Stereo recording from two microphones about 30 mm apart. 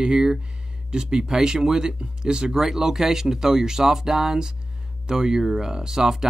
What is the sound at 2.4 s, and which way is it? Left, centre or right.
Speech, centre.